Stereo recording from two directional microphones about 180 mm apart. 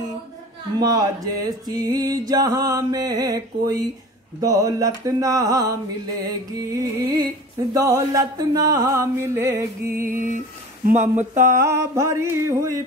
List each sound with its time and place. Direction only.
0.7 s a sound: 20° right (ahead or behind)
10.0 s speech: 50° right (ahead or behind)
11.6 s music: 15° right (ahead or behind)